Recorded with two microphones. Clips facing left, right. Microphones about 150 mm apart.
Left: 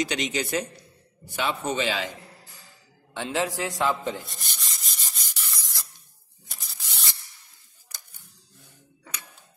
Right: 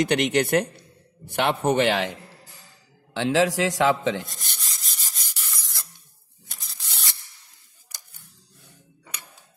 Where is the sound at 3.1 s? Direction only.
90° right.